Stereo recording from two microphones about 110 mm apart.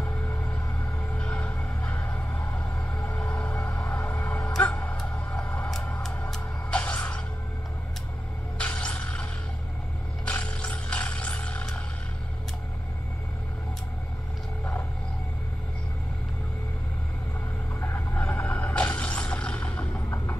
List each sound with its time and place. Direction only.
0.0 s music: 15° left (ahead or behind)
1.1 s a sound: 10° left (ahead or behind)
6.3 s music: 10° left (ahead or behind)
8.5 s a sound: 10° left (ahead or behind)
10.2 s music: 10° left (ahead or behind)
17.7 s music: 25° left (ahead or behind)